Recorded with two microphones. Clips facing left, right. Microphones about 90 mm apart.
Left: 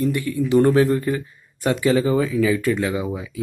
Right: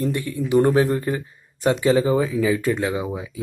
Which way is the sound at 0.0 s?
25° right (ahead or behind).